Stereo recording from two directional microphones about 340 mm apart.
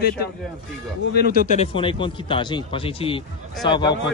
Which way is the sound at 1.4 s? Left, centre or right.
Centre.